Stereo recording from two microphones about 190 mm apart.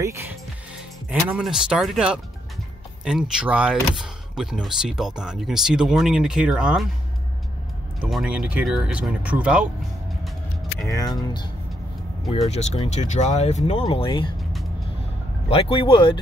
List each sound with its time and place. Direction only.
1.3 s speech: 5° right (ahead or behind)
8.0 s speech: 5° right (ahead or behind)
10.9 s speech: 20° left (ahead or behind)
12.3 s speech: 35° left (ahead or behind)
15.5 s speech: 30° left (ahead or behind)